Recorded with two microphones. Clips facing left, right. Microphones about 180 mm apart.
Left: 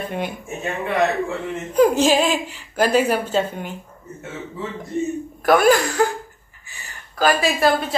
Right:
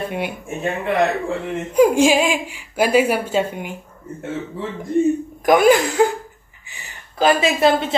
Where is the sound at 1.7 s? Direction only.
10° right (ahead or behind).